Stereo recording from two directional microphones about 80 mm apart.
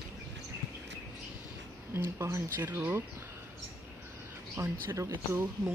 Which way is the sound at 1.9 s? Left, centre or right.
Right.